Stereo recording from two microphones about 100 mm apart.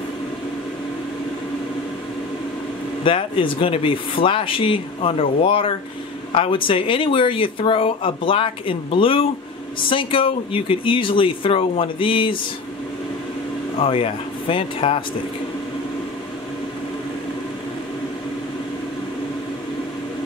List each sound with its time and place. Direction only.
3.0 s speech: 60° left (ahead or behind)
13.7 s speech: 70° left (ahead or behind)